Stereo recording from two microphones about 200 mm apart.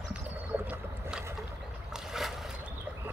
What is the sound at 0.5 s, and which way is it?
Boat, 10° right (ahead or behind).